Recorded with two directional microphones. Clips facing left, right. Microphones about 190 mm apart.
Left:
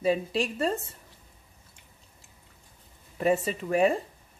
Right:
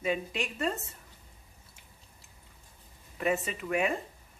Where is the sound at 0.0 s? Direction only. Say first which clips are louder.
Left 6 dB; 35° left (ahead or behind).